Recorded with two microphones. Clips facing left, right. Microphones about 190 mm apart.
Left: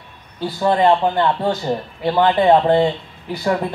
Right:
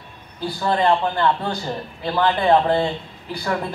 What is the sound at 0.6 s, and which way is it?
A man's voice, 20° left (ahead or behind).